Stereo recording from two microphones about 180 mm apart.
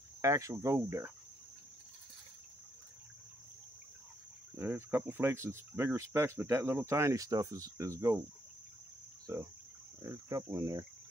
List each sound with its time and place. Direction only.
0.2 s speech: 15° right (ahead or behind)
4.6 s speech: 10° right (ahead or behind)
9.3 s speech: 15° right (ahead or behind)
10.0 s cricket: 20° right (ahead or behind)